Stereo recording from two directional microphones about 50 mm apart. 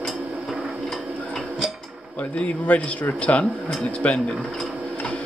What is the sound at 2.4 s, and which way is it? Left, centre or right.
Speech, left.